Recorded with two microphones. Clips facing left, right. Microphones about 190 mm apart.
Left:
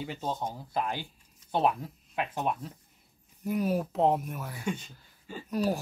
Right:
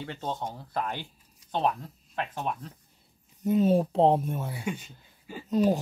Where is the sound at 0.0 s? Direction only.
5° left (ahead or behind).